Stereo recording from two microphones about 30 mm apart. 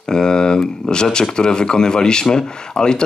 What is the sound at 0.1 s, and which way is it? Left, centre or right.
A man's voice, left.